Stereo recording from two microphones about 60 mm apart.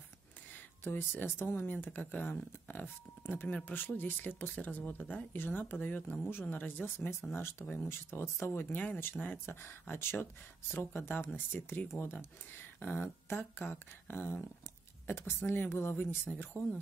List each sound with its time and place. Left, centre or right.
0.8 s speech: left
7.3 s speech: left
16.3 s speech: left